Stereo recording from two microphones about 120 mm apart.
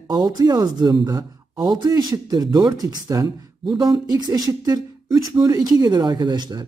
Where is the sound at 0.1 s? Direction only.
30° right (ahead or behind).